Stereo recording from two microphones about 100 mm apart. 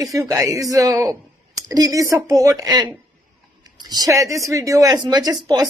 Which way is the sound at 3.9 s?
35° right (ahead or behind).